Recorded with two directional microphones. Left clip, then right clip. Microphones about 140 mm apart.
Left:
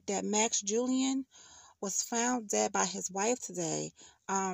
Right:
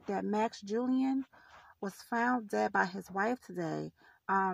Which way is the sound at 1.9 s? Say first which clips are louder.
Even; 40° left (ahead or behind).